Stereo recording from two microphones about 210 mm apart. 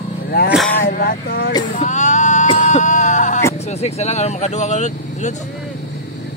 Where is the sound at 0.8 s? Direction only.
45° left (ahead or behind).